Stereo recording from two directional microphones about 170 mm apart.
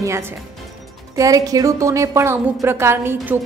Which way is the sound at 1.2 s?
20° right (ahead or behind).